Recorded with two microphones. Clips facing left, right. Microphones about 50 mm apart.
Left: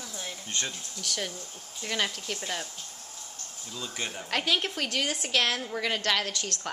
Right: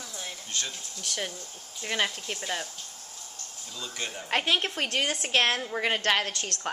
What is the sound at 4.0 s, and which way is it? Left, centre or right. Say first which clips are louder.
Speech: even; centre.